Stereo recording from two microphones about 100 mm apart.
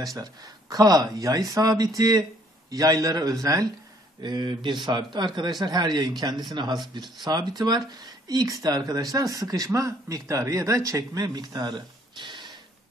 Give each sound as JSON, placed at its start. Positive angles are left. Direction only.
{"t": 0.2, "sound": "speech", "side_deg": -40}
{"t": 4.2, "sound": "speech", "side_deg": -45}